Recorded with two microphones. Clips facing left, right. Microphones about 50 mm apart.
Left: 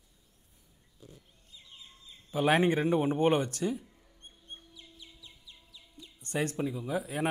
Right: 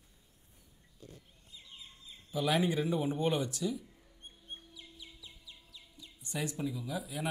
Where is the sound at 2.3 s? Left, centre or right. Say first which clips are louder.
Left 5 dB; left.